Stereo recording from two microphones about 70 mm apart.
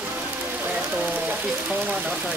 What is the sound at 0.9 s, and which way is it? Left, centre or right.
Speech, right.